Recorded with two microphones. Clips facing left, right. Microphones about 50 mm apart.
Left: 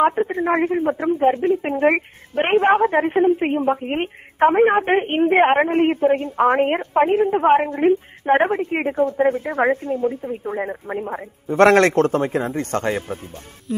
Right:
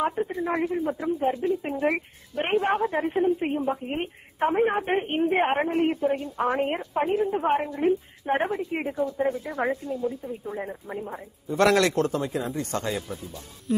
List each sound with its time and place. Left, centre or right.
0.0 s speech: left
13.7 s music: centre